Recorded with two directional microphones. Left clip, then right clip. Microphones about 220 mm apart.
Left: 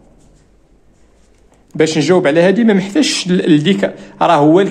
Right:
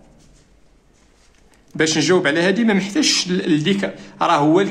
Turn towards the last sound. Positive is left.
turn(degrees=20)  # may be behind; listen again after turning